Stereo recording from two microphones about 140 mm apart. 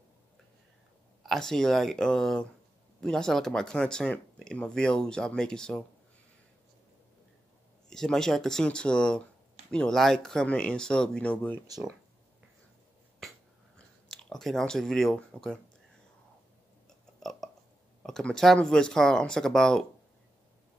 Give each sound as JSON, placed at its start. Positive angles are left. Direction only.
{"t": 1.2, "sound": "speech", "side_deg": 5}
{"t": 7.9, "sound": "speech", "side_deg": 5}
{"t": 13.7, "sound": "speech", "side_deg": 5}
{"t": 17.2, "sound": "burping", "side_deg": 0}
{"t": 18.0, "sound": "speech", "side_deg": 5}